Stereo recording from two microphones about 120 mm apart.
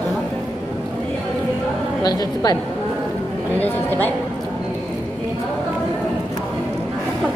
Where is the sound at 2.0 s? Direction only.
35° left (ahead or behind).